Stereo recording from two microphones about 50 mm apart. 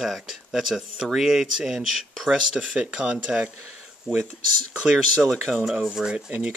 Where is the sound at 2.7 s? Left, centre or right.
Centre.